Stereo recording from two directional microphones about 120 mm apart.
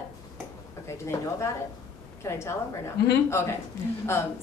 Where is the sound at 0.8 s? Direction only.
25° left (ahead or behind).